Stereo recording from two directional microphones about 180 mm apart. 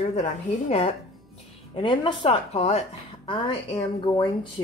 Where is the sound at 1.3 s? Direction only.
30° left (ahead or behind).